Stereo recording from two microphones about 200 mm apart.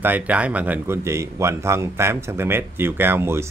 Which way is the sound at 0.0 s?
10° right (ahead or behind).